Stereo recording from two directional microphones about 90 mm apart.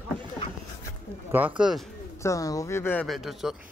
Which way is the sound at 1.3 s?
15° right (ahead or behind).